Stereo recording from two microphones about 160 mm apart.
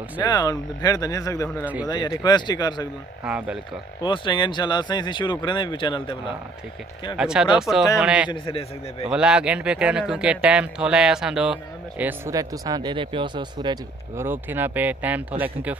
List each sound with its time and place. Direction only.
0.2 s speech: 25° left (ahead or behind)
1.6 s speech: 10° right (ahead or behind)
1.9 s speech: 25° left (ahead or behind)
3.3 s speech: 5° right (ahead or behind)
4.0 s speech: 30° left (ahead or behind)
7.2 s speech: 5° right (ahead or behind)
8.3 s a man's voice: 35° left (ahead or behind)
9.1 s speech: 5° right (ahead or behind); by 13.7 s 30° right (ahead or behind)
14.1 s speech: 15° right (ahead or behind)